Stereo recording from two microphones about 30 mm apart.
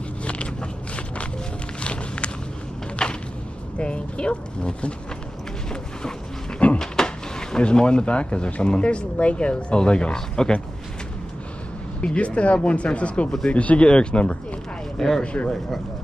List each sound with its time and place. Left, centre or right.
0.2 s a sound: left
1.8 s music: left
3.0 s a sound: left
3.7 s speech: left
6.8 s a sound: left
7.7 s speech: left
10.1 s speech: left
12.0 s speech: left
13.8 s speech: left
15.0 s speech: centre